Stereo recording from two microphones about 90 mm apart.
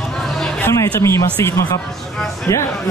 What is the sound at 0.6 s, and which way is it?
Speech, 30° left (ahead or behind).